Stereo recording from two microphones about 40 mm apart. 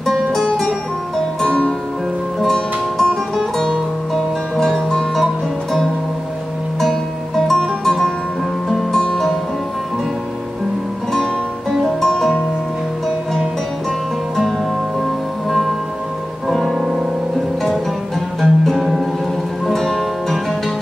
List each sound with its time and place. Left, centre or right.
0.0 s music: centre
2.4 s music: centre
7.3 s music: centre
12.0 s music: centre
16.4 s music: centre
18.4 s music: centre
19.7 s music: centre